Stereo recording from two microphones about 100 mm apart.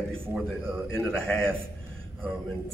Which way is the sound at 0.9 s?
10° left (ahead or behind).